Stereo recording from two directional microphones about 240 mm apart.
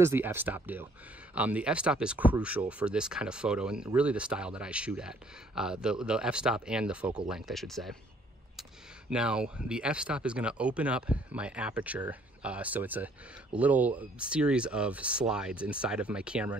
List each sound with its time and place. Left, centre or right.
0.0 s speech: centre
9.1 s speech: centre